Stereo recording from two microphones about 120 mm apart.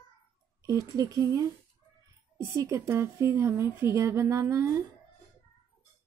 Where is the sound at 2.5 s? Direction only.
25° right (ahead or behind).